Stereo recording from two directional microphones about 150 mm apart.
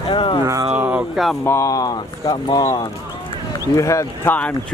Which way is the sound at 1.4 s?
20° left (ahead or behind).